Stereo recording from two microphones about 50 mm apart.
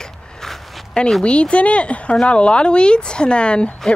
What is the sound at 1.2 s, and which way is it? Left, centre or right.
Speech, left.